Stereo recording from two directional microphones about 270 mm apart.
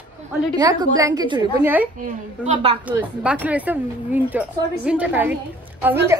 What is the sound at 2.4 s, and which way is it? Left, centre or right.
Speech, right.